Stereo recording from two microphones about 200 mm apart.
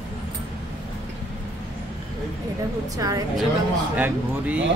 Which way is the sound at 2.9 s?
15° right (ahead or behind).